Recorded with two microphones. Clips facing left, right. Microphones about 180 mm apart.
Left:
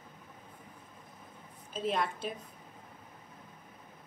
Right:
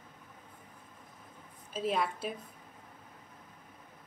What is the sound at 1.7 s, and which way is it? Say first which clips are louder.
Speech: right 1 dB; 5° right (ahead or behind).